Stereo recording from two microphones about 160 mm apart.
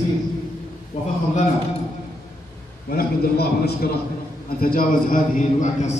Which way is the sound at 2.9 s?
75° left (ahead or behind).